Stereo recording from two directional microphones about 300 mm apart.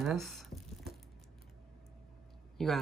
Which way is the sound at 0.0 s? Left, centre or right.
Centre.